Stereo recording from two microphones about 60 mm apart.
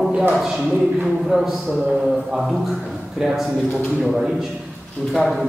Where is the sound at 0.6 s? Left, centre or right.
Right.